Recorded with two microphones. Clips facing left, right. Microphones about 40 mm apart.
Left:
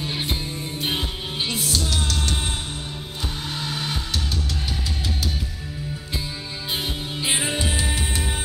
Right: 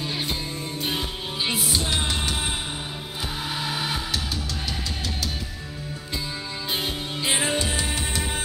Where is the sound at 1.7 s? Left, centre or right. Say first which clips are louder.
Even; right.